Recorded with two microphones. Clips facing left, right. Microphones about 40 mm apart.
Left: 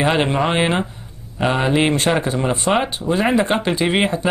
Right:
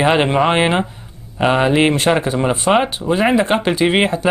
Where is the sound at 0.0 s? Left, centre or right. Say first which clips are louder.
Right 3 dB; centre.